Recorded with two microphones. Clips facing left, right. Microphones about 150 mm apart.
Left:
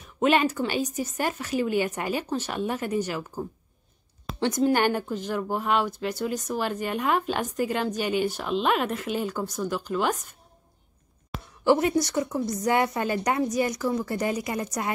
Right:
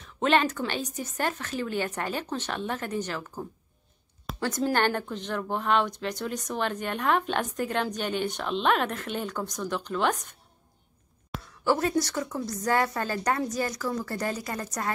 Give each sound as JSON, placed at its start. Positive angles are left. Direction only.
{"t": 0.0, "sound": "speech", "side_deg": 10}
{"t": 4.7, "sound": "speech", "side_deg": 10}
{"t": 11.6, "sound": "a woman's voice", "side_deg": 20}